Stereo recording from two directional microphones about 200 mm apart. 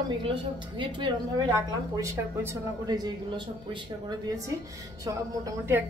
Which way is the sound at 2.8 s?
20° right (ahead or behind).